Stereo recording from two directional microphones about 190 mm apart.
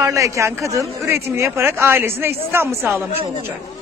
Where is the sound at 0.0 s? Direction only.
15° right (ahead or behind).